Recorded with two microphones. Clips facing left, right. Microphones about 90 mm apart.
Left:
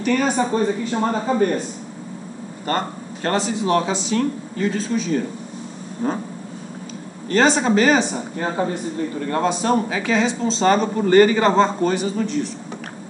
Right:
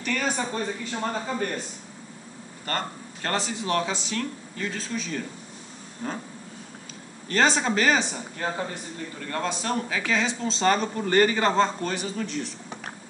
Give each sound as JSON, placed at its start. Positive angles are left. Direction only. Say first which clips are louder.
{"t": 0.0, "sound": "speech", "louder": "left 9 dB", "side_deg": 15}
{"t": 2.6, "sound": "a man's voice", "louder": "left 7 dB", "side_deg": 15}
{"t": 6.0, "sound": "speech", "louder": "left 9 dB", "side_deg": 25}
{"t": 7.2, "sound": "a man's voice", "louder": "left 6 dB", "side_deg": 5}
{"t": 8.1, "sound": "a man's voice", "louder": "left 6 dB", "side_deg": 20}